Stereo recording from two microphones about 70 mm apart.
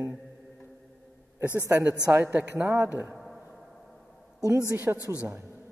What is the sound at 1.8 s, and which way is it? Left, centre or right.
A man's voice, right.